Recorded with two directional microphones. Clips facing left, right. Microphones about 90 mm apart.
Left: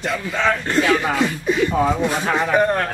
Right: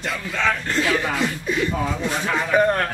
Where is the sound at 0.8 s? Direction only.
Centre (ahead or behind).